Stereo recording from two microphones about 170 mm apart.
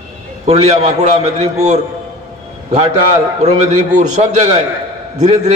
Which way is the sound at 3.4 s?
40° right (ahead or behind).